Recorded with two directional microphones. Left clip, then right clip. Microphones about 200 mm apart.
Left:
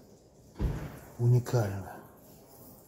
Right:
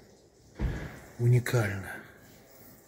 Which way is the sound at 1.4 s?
20° right (ahead or behind).